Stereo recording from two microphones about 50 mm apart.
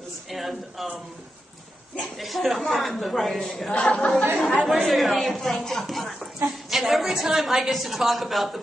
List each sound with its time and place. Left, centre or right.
0.3 s a man's voice: centre
2.1 s a woman's voice: centre
3.7 s speech: left
4.4 s a woman's voice: centre